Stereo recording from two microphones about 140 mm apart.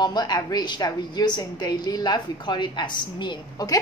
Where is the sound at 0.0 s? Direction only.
30° left (ahead or behind).